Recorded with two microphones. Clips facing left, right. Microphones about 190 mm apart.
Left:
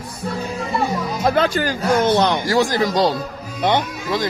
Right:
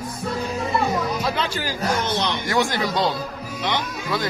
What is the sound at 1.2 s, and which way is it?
Speech, 50° left (ahead or behind).